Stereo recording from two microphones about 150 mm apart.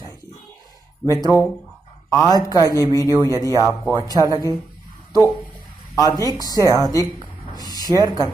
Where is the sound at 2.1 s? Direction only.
25° left (ahead or behind).